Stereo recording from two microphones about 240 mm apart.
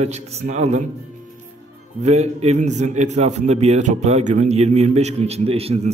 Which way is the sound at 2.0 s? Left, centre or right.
Right.